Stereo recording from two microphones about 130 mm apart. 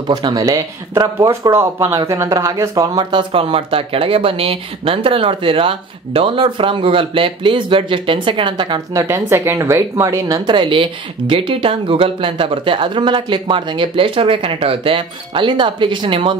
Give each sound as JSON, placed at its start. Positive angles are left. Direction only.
{"t": 0.1, "sound": "speech", "side_deg": -30}
{"t": 8.9, "sound": "speech", "side_deg": -20}